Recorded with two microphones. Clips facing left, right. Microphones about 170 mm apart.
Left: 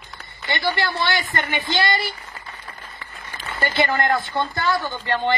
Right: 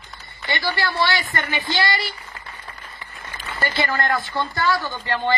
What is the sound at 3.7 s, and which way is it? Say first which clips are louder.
A woman's voice: left 3 dB; 20° left (ahead or behind).